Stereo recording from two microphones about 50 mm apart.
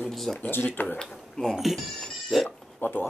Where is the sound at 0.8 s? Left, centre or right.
Left.